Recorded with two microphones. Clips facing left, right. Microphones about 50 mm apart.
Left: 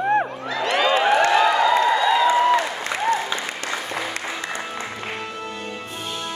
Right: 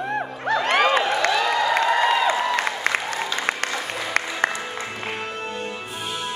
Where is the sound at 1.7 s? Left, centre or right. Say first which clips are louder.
Left 2 dB; right.